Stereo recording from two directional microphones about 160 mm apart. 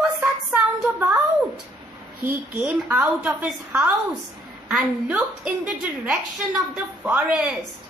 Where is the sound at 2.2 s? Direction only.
10° right (ahead or behind).